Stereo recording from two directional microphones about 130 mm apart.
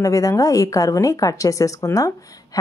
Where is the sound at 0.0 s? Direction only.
25° left (ahead or behind).